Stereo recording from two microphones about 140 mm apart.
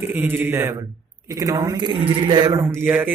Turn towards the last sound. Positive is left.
turn(degrees=-10)  # may be behind; listen again after turning